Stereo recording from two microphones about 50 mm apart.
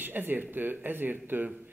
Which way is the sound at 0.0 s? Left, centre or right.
Right.